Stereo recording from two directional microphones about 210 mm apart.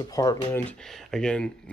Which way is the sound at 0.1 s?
20° left (ahead or behind).